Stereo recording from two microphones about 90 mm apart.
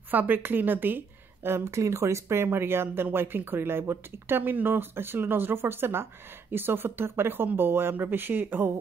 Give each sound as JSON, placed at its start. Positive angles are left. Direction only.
{"t": 0.1, "sound": "a woman's voice", "side_deg": -20}